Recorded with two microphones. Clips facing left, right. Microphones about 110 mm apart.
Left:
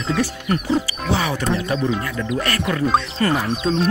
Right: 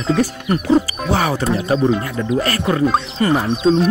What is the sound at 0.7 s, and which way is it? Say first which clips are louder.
Speech: right 4 dB; 45° right (ahead or behind).